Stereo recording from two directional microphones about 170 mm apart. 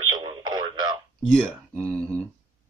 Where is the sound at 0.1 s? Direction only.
25° right (ahead or behind).